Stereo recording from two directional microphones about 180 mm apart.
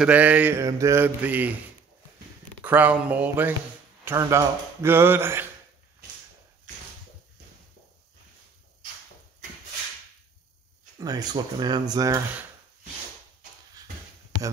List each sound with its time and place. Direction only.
0.0 s speech: 5° right (ahead or behind)
2.6 s speech: 10° right (ahead or behind)
11.0 s speech: 20° right (ahead or behind)